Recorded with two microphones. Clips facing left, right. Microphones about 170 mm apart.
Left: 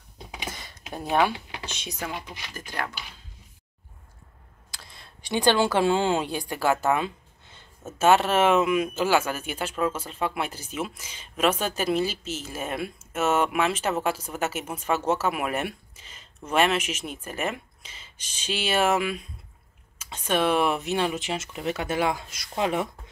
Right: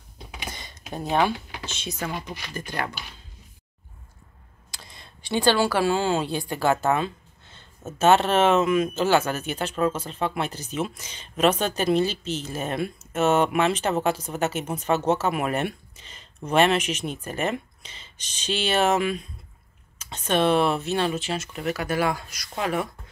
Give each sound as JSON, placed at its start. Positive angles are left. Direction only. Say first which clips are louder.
{"t": 0.5, "sound": "computer keyboard", "louder": "even", "side_deg": 5}
{"t": 0.9, "sound": "a woman's voice", "louder": "right 1 dB", "side_deg": 10}
{"t": 5.2, "sound": "a woman's voice", "louder": "right 1 dB", "side_deg": 15}